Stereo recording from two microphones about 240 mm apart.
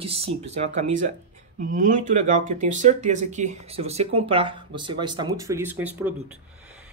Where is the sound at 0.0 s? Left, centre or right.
Right.